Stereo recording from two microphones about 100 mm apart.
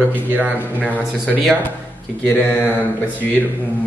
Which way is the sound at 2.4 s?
20° left (ahead or behind).